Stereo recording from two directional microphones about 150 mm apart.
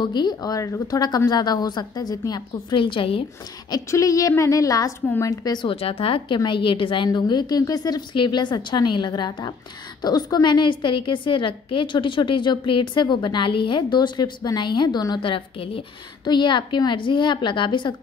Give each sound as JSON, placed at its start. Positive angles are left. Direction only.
{"t": 0.0, "sound": "a woman's voice", "side_deg": 30}
{"t": 3.7, "sound": "a woman's voice", "side_deg": 20}